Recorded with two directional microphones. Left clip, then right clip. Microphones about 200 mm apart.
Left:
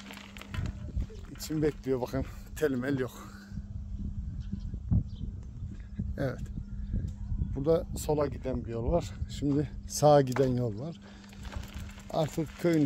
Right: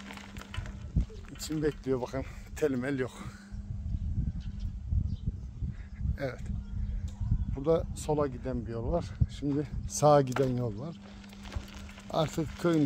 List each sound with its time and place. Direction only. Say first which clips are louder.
1.4 s speech: left 1 dB; 10° left (ahead or behind)
6.1 s speech: left 2 dB; 5° left (ahead or behind)
7.5 s speech: left 1 dB; 10° left (ahead or behind)
8.6 s speech: left 3 dB; 30° left (ahead or behind)
12.1 s speech: even; centre (ahead or behind)